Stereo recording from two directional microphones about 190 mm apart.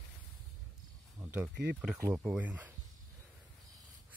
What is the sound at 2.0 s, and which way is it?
Speech, 10° right (ahead or behind).